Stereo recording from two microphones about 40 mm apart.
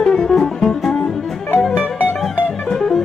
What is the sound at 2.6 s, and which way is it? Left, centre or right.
Music, centre.